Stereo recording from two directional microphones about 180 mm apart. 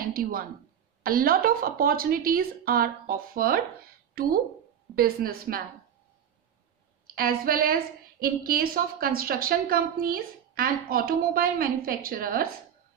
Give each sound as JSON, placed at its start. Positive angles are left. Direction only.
{"t": 0.0, "sound": "a woman's voice", "side_deg": -55}
{"t": 4.9, "sound": "a woman's voice", "side_deg": -55}
{"t": 7.2, "sound": "a woman's voice", "side_deg": -55}